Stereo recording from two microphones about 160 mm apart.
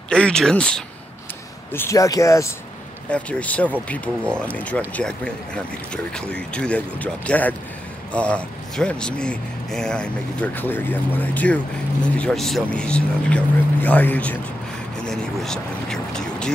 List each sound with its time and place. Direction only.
0.1 s speech: 5° left (ahead or behind)
1.7 s speech: 15° left (ahead or behind)
3.1 s speech: 10° left (ahead or behind)